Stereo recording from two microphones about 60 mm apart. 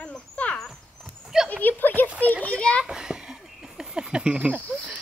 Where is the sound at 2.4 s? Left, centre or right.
Left.